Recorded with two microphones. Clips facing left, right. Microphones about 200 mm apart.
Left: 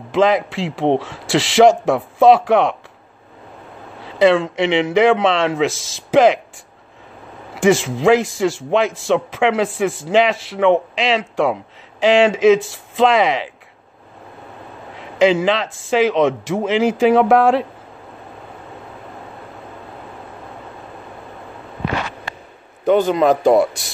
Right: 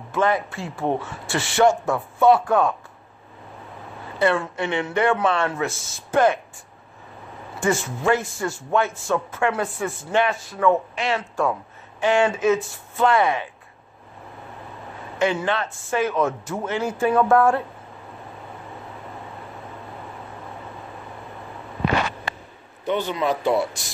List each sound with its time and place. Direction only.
0.1 s a man's voice: 90° left
4.0 s a man's voice: 90° left
7.5 s a man's voice: 90° left
15.0 s a man's voice: 90° left
22.9 s speech: 45° left (ahead or behind)